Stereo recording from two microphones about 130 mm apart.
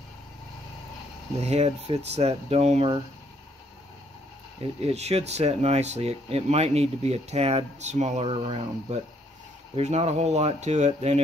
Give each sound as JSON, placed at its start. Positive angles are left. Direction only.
{"t": 1.4, "sound": "speech", "side_deg": -55}
{"t": 4.7, "sound": "speech", "side_deg": -50}